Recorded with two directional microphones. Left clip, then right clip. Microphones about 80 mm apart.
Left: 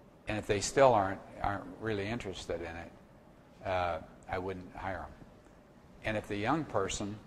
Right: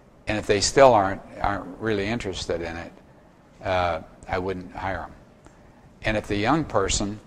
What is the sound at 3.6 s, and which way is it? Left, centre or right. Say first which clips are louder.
Speech: right 9 dB; right.